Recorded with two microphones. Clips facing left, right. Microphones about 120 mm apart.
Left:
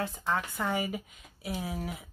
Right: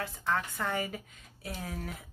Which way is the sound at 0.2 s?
10° left (ahead or behind).